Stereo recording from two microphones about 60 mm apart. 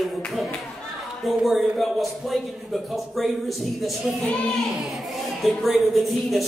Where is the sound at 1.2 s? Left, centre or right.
Centre.